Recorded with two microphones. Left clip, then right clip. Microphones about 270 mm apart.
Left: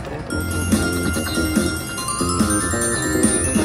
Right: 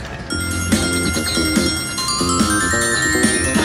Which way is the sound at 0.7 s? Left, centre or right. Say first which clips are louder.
Right 3 dB; centre.